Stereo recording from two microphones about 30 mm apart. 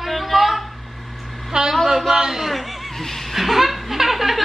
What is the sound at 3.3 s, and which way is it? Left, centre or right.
Chuckle, centre.